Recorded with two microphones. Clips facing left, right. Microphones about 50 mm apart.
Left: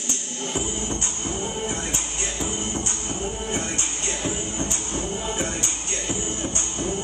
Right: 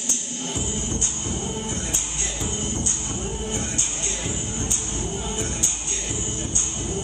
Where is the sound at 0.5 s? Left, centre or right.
Left.